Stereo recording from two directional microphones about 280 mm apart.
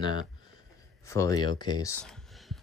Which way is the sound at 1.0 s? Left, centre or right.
Centre.